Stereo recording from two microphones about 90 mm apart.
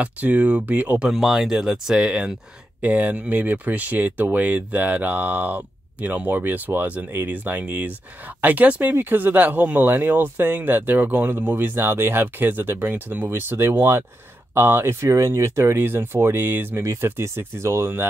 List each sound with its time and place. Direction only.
0.0 s speech: 15° right (ahead or behind)